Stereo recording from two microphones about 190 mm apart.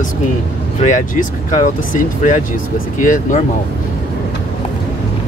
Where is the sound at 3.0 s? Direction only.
45° left (ahead or behind).